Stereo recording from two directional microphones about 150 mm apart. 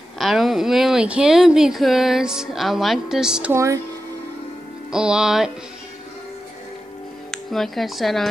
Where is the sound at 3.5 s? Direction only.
20° right (ahead or behind).